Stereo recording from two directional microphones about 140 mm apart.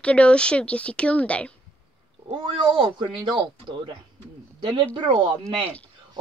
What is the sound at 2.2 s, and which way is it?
A man's voice, 35° right (ahead or behind).